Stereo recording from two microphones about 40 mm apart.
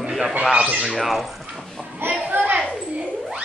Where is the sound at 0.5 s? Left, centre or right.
Right.